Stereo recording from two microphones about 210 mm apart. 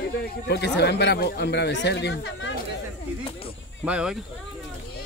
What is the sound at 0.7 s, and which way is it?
Speech, 55° left (ahead or behind).